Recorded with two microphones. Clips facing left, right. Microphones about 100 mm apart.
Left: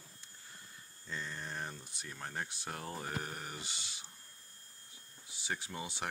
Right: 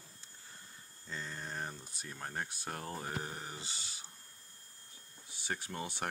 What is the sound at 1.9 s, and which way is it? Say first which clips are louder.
Speech: right 1 dB; 40° right (ahead or behind).